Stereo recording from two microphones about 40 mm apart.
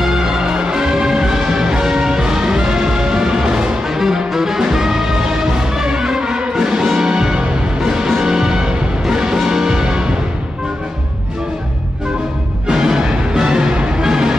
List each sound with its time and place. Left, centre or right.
0.1 s music: centre
12.6 s music: centre